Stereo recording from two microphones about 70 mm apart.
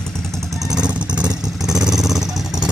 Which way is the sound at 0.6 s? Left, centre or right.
Centre.